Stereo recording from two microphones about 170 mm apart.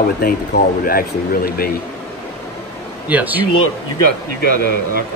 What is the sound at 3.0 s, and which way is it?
Speech, 10° right (ahead or behind).